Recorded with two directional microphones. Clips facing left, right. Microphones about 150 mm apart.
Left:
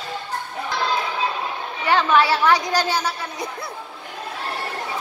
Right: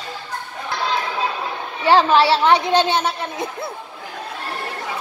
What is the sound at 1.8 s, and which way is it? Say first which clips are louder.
Speech: right 4 dB; 30° right (ahead or behind).